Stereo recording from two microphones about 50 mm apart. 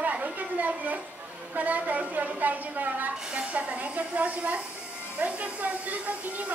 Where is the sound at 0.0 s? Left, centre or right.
Right.